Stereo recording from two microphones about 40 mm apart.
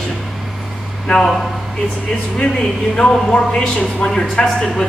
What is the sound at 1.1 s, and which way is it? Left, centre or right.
Speech, left.